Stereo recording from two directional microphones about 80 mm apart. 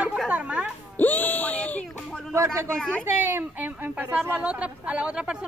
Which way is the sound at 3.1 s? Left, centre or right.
Right.